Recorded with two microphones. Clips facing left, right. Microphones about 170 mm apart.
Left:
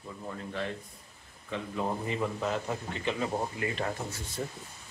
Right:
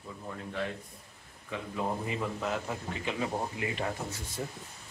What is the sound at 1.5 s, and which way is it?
A man's voice, 5° right (ahead or behind).